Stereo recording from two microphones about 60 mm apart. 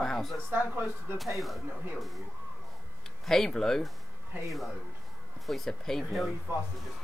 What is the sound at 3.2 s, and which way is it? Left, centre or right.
Speech, centre.